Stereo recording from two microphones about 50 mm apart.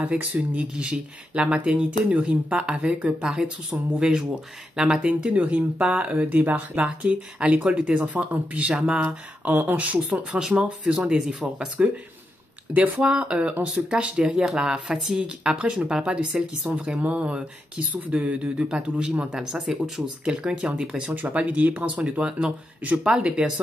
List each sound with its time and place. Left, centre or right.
0.1 s speech: centre
5.0 s speech: right
9.5 s speech: right
9.8 s speech: right
10.9 s speech: centre
14.3 s speech: centre; by 18.7 s right
18.7 s speech: centre
21.1 s speech: right